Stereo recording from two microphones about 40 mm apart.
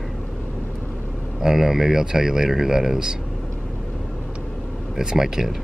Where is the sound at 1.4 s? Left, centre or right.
Centre.